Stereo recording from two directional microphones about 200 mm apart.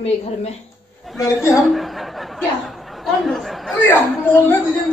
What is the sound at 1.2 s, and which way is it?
Speech, 15° left (ahead or behind).